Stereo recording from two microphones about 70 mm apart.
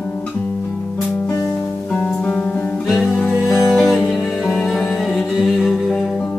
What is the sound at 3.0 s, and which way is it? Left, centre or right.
Music, centre.